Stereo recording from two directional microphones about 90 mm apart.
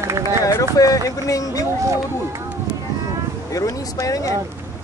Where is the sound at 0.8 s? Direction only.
40° left (ahead or behind).